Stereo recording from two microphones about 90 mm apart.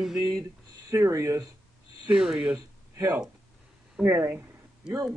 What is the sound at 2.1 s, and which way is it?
Speech, 10° right (ahead or behind).